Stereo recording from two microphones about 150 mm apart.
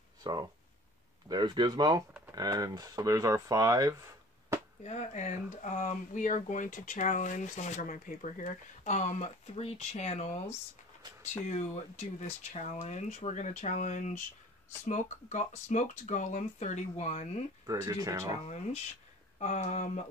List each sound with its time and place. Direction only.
0.2 s speech: 25° right (ahead or behind)
4.8 s speech: 50° left (ahead or behind)
11.4 s speech: 50° left (ahead or behind)
17.6 s speech: 25° right (ahead or behind)
19.4 s speech: 50° left (ahead or behind)